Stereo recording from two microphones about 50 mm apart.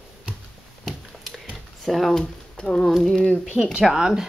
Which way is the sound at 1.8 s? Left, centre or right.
Centre.